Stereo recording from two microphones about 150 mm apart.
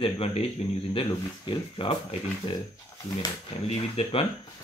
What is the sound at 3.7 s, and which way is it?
Speech, 40° left (ahead or behind).